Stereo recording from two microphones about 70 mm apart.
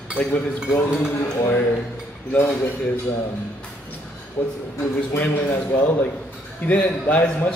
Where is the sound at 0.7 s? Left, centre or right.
Left.